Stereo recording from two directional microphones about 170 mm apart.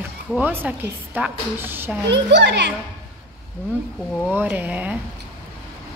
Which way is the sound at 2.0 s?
90° right.